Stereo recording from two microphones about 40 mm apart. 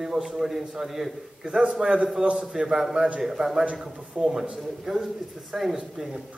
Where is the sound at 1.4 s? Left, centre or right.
Right.